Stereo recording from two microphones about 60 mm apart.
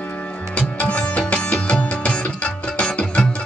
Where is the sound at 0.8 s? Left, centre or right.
Centre.